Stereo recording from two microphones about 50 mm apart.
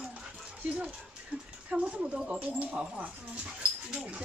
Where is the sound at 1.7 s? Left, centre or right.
Right.